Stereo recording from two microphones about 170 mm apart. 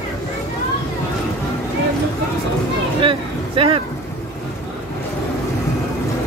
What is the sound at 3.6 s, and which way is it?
Speech, 30° right (ahead or behind).